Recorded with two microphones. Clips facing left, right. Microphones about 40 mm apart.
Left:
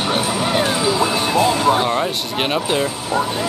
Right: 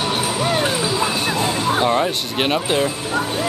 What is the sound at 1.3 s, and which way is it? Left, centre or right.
Music, left.